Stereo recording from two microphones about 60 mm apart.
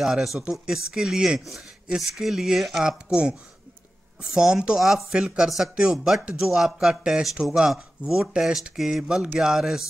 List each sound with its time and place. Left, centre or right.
0.0 s a man's voice: centre